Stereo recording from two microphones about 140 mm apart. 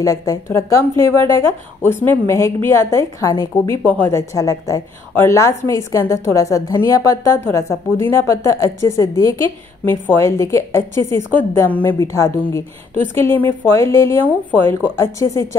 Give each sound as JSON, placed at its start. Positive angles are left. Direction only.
{"t": 0.0, "sound": "a woman's voice", "side_deg": 25}